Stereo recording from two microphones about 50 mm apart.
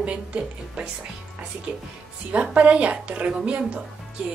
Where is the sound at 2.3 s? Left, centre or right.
Right.